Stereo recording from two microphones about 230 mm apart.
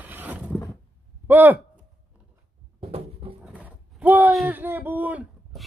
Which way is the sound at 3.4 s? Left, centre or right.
Centre.